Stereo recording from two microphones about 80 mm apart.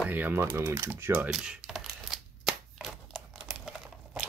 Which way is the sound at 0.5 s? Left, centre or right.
Right.